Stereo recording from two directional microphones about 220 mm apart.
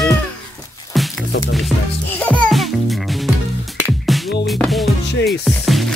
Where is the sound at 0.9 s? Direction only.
Centre (ahead or behind).